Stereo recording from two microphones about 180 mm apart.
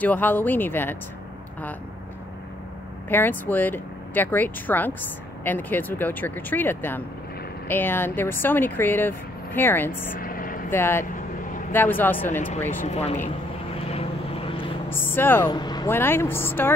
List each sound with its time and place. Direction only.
0.0 s speech: 10° left (ahead or behind)
3.1 s speech: 10° left (ahead or behind)
10.1 s vehicle: 50° left (ahead or behind)
10.7 s speech: 10° left (ahead or behind)
12.8 s speech: 35° left (ahead or behind)
13.7 s vehicle: 35° left (ahead or behind)
14.9 s speech: 10° left (ahead or behind)
15.5 s speech: 25° left (ahead or behind)